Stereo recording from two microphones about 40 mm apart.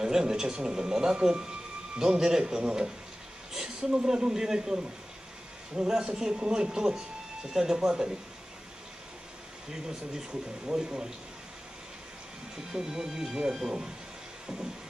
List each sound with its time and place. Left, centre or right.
0.0 s a man's voice: centre
9.7 s a man's voice: centre
12.7 s a man's voice: centre